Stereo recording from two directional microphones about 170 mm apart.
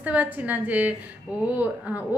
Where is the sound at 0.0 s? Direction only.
10° right (ahead or behind).